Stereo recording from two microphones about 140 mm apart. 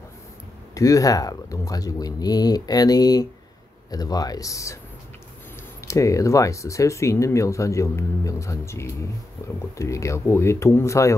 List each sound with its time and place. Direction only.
0.7 s speech: 25° left (ahead or behind)
5.9 s speech: 20° left (ahead or behind)